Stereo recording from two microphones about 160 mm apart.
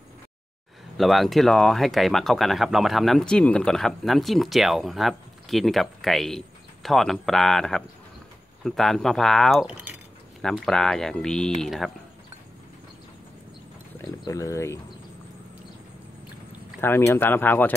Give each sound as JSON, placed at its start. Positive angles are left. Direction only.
{"t": 0.9, "sound": "speech", "side_deg": 0}
{"t": 10.4, "sound": "speech", "side_deg": 0}
{"t": 14.2, "sound": "speech", "side_deg": 20}
{"t": 16.8, "sound": "speech", "side_deg": 15}